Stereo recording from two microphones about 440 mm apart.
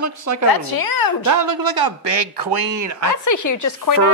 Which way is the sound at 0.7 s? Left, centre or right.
Left.